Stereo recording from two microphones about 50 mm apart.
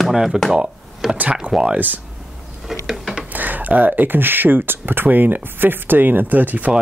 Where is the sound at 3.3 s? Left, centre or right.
Right.